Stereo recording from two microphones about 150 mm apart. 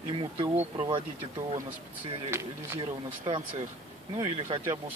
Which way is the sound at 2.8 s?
35° right (ahead or behind).